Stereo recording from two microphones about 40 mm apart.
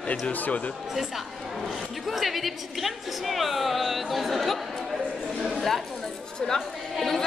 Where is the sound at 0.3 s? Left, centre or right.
Left.